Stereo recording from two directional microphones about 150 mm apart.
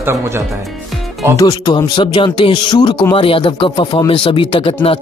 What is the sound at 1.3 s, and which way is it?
Speech, 25° left (ahead or behind).